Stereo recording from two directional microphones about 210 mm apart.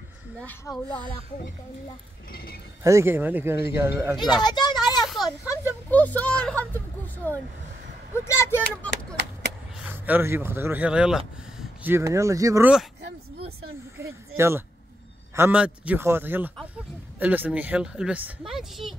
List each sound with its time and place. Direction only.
0.7 s speech: 10° left (ahead or behind)
2.3 s speech: 45° left (ahead or behind)
2.8 s a man's voice: 15° right (ahead or behind)
4.2 s a child's voice: 20° left (ahead or behind)
5.0 s a sound: centre (ahead or behind)
5.9 s speech: 10° left (ahead or behind)
9.8 s speech: 10° right (ahead or behind)
13.9 s a man's voice: 10° right (ahead or behind)